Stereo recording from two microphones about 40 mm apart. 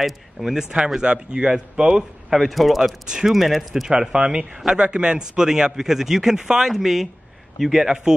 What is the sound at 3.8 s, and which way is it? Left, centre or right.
A man's voice, right.